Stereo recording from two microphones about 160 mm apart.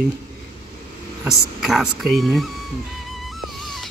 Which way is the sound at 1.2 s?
5° right (ahead or behind).